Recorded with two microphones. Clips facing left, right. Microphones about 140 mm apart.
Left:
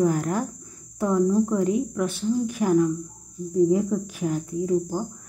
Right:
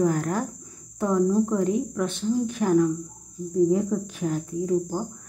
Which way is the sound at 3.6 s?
5° left (ahead or behind).